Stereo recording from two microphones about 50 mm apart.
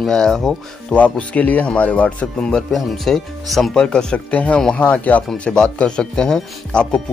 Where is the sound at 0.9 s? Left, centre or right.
Left.